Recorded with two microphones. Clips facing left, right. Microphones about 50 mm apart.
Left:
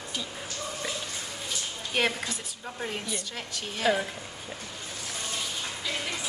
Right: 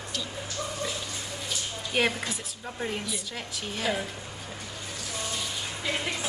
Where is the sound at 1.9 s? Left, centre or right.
Centre.